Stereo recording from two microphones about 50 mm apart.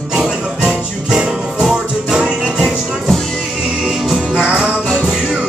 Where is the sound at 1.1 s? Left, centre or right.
Centre.